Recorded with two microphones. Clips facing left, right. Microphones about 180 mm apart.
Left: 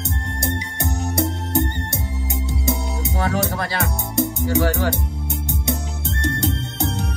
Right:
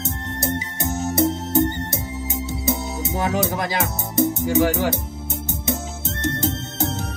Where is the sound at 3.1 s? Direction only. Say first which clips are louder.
Right 1 dB; 20° right (ahead or behind).